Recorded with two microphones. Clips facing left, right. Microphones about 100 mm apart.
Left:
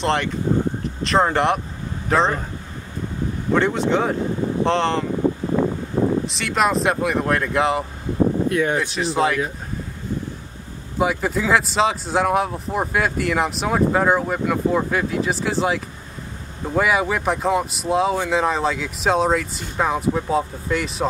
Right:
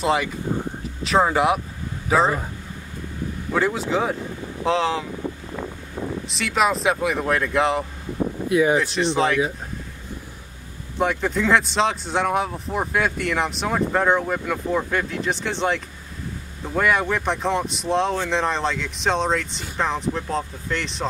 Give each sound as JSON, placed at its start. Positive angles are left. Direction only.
{"t": 0.0, "sound": "speech", "side_deg": -5}
{"t": 3.5, "sound": "speech", "side_deg": -5}
{"t": 5.2, "sound": "a sound", "side_deg": 60}
{"t": 6.2, "sound": "speech", "side_deg": 0}
{"t": 11.0, "sound": "speech", "side_deg": 5}